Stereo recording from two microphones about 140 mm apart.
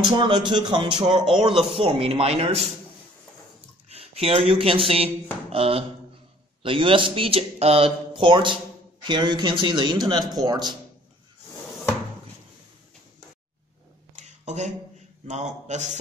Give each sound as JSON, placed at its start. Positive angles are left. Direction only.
{"t": 0.2, "sound": "speech", "side_deg": -35}
{"t": 3.9, "sound": "a man's voice", "side_deg": -45}
{"t": 14.1, "sound": "a sound", "side_deg": -55}
{"t": 15.2, "sound": "a man's voice", "side_deg": -55}